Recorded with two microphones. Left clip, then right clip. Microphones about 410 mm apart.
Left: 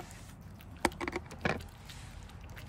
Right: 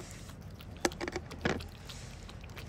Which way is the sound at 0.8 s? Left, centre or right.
Centre.